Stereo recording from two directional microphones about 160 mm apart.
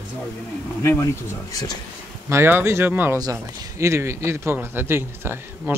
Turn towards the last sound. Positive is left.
turn(degrees=-15)  # may be behind; listen again after turning